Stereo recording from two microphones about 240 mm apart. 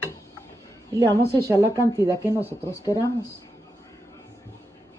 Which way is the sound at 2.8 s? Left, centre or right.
Centre.